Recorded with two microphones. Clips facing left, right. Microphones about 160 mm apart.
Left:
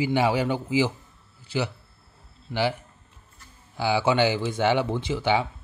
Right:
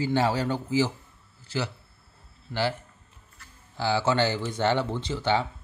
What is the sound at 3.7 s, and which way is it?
Speech, 15° left (ahead or behind).